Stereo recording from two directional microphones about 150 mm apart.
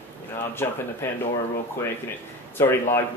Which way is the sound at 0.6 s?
15° left (ahead or behind).